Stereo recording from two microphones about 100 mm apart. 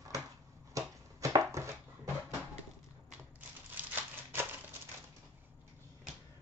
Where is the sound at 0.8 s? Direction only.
35° right (ahead or behind).